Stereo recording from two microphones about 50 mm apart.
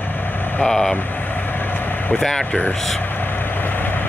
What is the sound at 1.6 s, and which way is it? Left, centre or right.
Vehicle, left.